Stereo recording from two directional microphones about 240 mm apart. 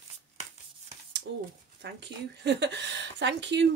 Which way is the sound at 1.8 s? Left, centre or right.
Right.